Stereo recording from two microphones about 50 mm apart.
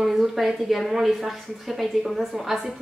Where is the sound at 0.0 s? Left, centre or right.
Centre.